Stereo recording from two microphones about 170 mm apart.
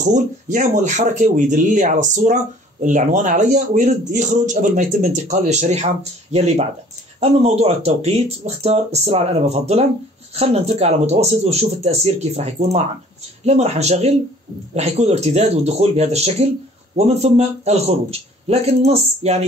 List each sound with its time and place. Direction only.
0.0 s speech: 50° right (ahead or behind)